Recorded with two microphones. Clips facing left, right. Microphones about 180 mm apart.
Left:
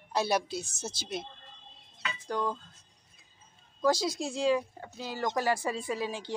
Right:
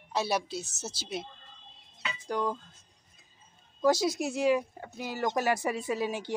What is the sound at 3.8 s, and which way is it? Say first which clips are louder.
A woman's voice: right 2 dB; 20° right (ahead or behind).